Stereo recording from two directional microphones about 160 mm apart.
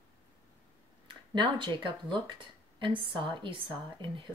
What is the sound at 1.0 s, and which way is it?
Speech, 30° right (ahead or behind).